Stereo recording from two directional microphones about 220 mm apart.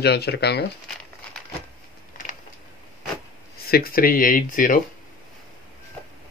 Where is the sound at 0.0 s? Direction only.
45° left (ahead or behind).